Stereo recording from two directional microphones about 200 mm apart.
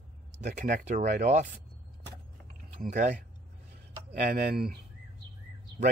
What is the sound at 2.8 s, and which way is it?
Speech, 40° right (ahead or behind).